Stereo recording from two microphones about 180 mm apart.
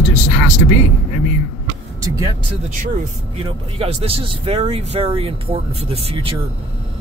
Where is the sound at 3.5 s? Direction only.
30° right (ahead or behind).